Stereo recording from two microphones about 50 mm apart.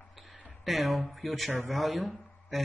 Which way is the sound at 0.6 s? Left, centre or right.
Centre.